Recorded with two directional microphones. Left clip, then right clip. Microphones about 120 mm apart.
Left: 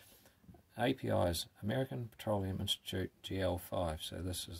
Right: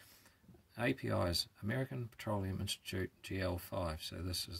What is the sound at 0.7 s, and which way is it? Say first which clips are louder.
Speech: left 3 dB; 30° left (ahead or behind).